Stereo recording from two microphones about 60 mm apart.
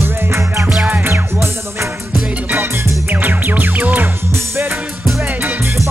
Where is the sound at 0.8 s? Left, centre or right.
Right.